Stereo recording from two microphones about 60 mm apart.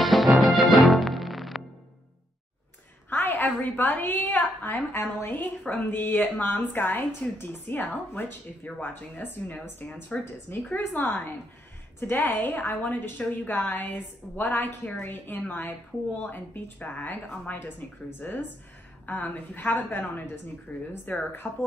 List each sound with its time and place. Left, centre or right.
0.0 s music: centre
3.1 s a sound: left
3.7 s a woman's voice: left
21.4 s speech: centre